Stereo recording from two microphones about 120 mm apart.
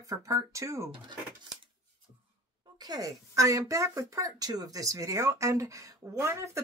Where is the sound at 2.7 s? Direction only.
35° right (ahead or behind).